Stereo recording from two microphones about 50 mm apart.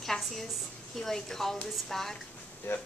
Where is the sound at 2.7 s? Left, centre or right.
Left.